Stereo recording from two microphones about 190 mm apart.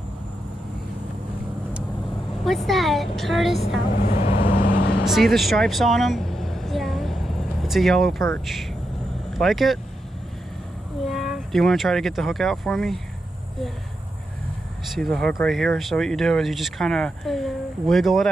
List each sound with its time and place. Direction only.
2.4 s speech: centre (ahead or behind)
4.0 s vehicle: 45° left (ahead or behind)
5.0 s vehicle: centre (ahead or behind)
8.5 s speech: centre (ahead or behind)
11.1 s speech: centre (ahead or behind)
14.9 s speech: centre (ahead or behind)